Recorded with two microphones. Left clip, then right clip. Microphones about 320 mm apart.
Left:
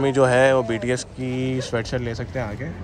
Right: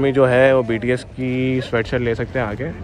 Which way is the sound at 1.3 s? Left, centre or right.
Left.